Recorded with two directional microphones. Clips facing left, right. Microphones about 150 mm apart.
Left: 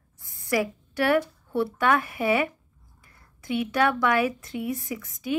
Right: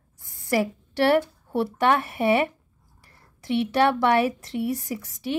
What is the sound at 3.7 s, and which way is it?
Speech, 30° right (ahead or behind).